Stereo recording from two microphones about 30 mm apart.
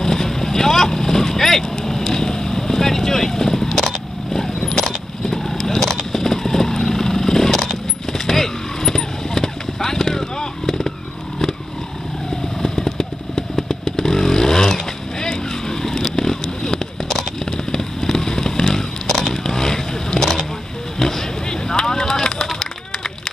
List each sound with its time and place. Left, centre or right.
0.0 s vehicle: centre
4.6 s keys jangling: centre
5.7 s vehicle: centre
12.6 s vehicle: centre
19.0 s vehicle: centre
19.3 s vehicle: centre
21.8 s a sound: centre